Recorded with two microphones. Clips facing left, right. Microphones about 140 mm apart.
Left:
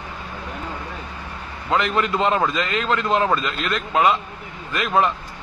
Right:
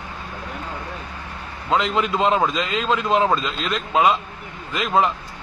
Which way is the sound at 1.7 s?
20° right (ahead or behind).